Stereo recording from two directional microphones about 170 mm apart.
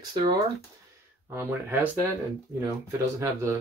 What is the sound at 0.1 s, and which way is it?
Speech, 30° right (ahead or behind).